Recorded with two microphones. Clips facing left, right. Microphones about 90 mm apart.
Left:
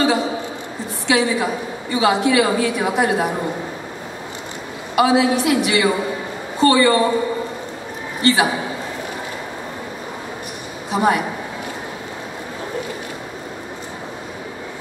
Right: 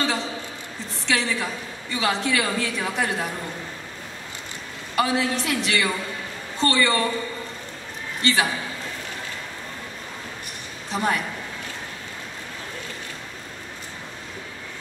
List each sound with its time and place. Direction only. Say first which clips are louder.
0.0 s a sound: left 8 dB; 15° left (ahead or behind)
1.0 s a woman's voice: left 7 dB; 15° left (ahead or behind)
4.9 s a woman's voice: left 8 dB; 15° left (ahead or behind)
8.3 s a woman's voice: left 6 dB; 15° left (ahead or behind)
10.9 s a woman's voice: left 7 dB; 15° left (ahead or behind)